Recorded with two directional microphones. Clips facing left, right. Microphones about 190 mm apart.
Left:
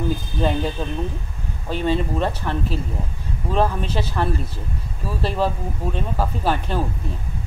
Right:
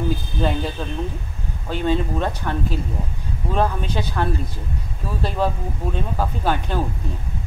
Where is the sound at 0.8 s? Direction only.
15° left (ahead or behind).